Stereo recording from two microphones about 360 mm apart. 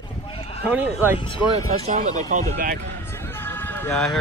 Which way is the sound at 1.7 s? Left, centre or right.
Right.